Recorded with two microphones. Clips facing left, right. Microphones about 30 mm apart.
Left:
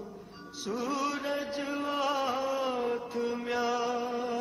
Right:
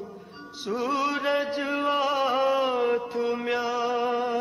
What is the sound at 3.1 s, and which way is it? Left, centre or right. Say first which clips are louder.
Music: right 5 dB; right.